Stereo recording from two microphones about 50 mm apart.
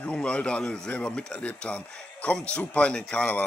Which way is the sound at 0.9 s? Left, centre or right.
Left.